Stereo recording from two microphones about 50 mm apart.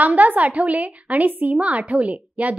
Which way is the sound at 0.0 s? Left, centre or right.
Right.